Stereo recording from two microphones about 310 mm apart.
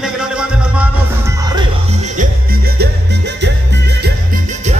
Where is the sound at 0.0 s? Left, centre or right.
Centre.